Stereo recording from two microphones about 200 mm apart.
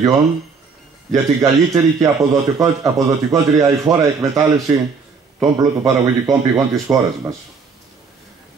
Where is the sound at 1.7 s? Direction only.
15° right (ahead or behind).